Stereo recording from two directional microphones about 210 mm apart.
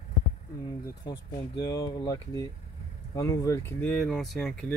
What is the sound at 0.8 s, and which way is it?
Speech, 20° left (ahead or behind).